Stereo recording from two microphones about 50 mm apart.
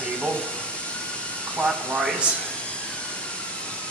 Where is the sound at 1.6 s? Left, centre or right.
Centre.